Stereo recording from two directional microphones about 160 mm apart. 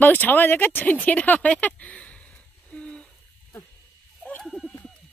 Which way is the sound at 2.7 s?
5° left (ahead or behind).